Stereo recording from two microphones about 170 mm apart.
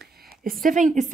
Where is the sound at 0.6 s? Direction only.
45° right (ahead or behind).